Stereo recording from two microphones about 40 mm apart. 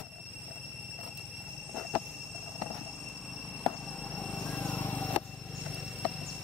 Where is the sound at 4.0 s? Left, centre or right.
Left.